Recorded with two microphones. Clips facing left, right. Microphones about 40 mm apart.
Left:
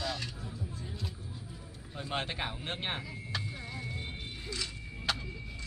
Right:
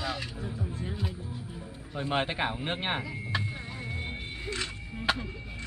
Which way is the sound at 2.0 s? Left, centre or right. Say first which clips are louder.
Right 6 dB; centre.